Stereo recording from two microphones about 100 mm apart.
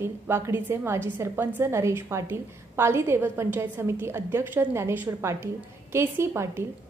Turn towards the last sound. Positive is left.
turn(degrees=-25)  # may be behind; listen again after turning